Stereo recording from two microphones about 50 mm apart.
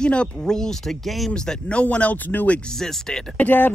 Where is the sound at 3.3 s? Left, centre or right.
Left.